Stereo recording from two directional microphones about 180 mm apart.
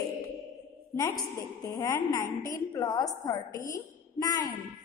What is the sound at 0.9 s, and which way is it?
A woman's voice, 15° left (ahead or behind).